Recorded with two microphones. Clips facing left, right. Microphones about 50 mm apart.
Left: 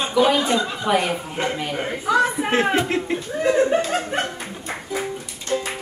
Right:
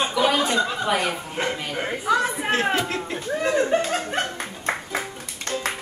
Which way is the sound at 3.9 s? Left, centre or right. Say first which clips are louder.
Left 2 dB; left.